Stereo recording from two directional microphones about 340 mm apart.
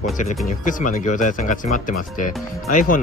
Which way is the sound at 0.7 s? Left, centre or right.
Left.